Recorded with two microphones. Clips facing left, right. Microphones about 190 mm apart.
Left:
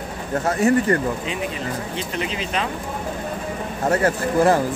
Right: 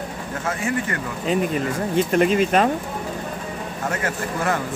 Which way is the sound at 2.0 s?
50° right (ahead or behind).